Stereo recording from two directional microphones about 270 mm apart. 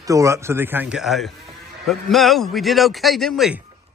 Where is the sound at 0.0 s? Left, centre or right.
Centre.